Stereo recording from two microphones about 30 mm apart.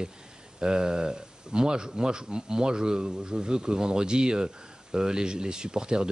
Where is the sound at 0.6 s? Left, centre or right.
Right.